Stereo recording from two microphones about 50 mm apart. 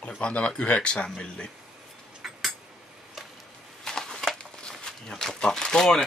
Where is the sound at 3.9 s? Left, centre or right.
Centre.